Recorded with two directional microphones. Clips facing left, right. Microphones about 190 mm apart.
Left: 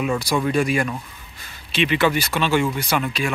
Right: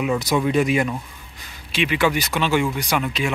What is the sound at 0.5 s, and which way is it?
Speech, 20° right (ahead or behind).